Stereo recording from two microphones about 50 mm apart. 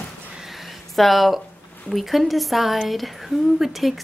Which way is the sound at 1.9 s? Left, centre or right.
Centre.